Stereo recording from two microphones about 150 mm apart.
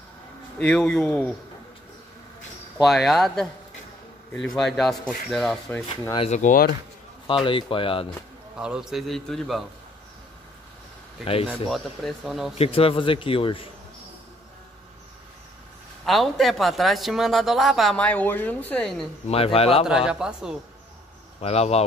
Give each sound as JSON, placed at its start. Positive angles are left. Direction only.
{"t": 0.6, "sound": "speech", "side_deg": 5}
{"t": 2.8, "sound": "speech", "side_deg": 0}
{"t": 6.1, "sound": "speech", "side_deg": 45}
{"t": 6.4, "sound": "speech", "side_deg": 70}
{"t": 7.2, "sound": "speech", "side_deg": 35}
{"t": 8.5, "sound": "speech", "side_deg": -5}
{"t": 11.7, "sound": "speech", "side_deg": 0}
{"t": 12.5, "sound": "speech", "side_deg": 40}
{"t": 16.1, "sound": "speech", "side_deg": 0}
{"t": 19.2, "sound": "speech", "side_deg": 40}
{"t": 20.1, "sound": "speech", "side_deg": -5}
{"t": 21.4, "sound": "speech", "side_deg": 45}